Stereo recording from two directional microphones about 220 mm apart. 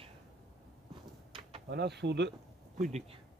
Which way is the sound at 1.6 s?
50° right (ahead or behind).